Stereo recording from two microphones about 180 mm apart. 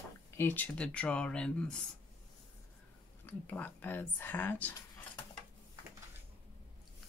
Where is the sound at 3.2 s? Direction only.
10° left (ahead or behind).